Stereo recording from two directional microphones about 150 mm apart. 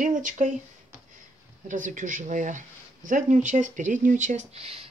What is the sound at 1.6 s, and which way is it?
Speech, 60° right (ahead or behind).